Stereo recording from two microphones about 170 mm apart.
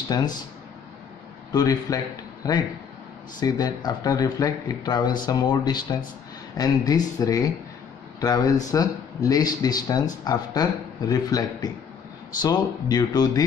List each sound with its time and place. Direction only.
0.1 s speech: 25° left (ahead or behind)
1.5 s speech: 20° left (ahead or behind)